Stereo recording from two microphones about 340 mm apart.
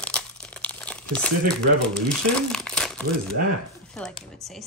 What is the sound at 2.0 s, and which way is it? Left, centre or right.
Speech, centre.